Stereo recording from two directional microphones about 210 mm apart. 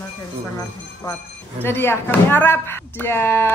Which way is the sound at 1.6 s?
10° left (ahead or behind).